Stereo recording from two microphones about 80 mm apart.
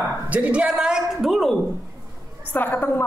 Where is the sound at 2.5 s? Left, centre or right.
Left.